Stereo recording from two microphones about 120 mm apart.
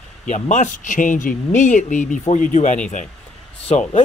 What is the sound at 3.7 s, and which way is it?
Speech, 70° left (ahead or behind).